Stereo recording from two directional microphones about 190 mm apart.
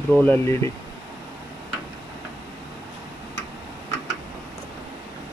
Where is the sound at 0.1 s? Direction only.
10° left (ahead or behind).